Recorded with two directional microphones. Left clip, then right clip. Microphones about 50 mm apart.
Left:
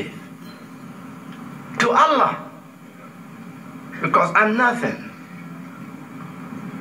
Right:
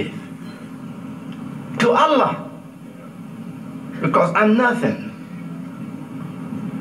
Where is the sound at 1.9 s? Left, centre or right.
Left.